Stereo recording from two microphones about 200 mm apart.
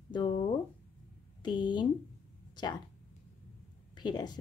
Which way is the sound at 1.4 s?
20° left (ahead or behind).